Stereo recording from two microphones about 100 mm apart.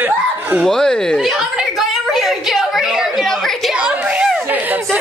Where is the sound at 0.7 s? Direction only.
5° left (ahead or behind).